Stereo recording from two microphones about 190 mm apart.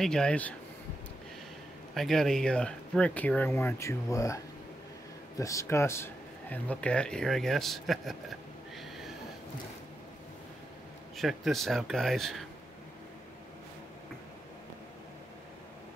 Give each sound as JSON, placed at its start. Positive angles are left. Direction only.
{"t": 0.0, "sound": "a man's voice", "side_deg": 5}
{"t": 2.0, "sound": "speech", "side_deg": 0}
{"t": 5.4, "sound": "a man's voice", "side_deg": 15}
{"t": 11.1, "sound": "a man's voice", "side_deg": 0}